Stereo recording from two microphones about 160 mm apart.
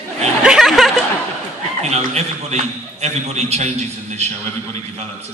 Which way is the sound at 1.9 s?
45° right (ahead or behind).